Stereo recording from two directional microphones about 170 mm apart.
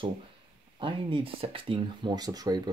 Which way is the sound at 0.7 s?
30° right (ahead or behind).